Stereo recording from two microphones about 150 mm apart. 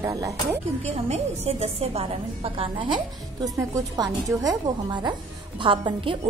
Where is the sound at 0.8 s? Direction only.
45° right (ahead or behind).